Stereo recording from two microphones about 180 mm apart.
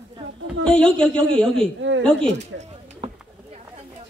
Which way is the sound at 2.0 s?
5° left (ahead or behind).